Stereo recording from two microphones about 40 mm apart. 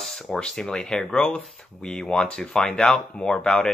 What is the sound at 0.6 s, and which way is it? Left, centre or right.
Speech, centre.